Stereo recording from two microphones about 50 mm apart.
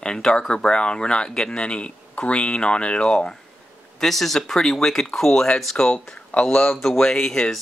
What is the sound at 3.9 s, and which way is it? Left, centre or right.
Speech, centre.